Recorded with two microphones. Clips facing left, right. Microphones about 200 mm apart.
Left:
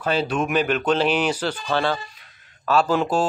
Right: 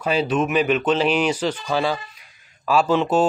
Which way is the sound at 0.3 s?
10° left (ahead or behind).